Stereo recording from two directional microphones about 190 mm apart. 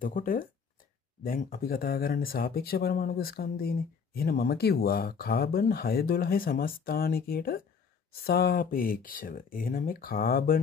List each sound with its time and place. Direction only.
0.0 s speech: 45° left (ahead or behind)